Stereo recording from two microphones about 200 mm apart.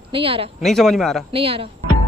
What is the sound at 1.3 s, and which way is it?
Speech, 30° right (ahead or behind).